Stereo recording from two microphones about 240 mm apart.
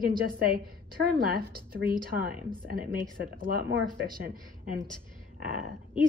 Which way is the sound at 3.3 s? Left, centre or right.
Right.